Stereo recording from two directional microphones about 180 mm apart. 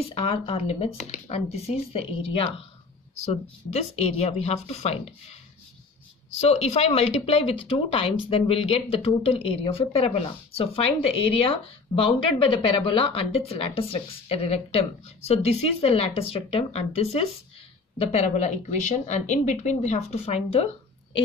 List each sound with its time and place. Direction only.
0.1 s speech: 30° left (ahead or behind)
6.3 s speech: 35° left (ahead or behind)